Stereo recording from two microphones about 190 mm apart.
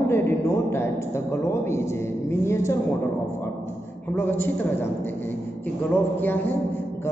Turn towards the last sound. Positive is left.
turn(degrees=10)  # may be behind; listen again after turning